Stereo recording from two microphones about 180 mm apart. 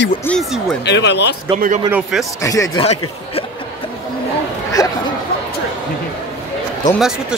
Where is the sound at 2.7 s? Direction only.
35° left (ahead or behind).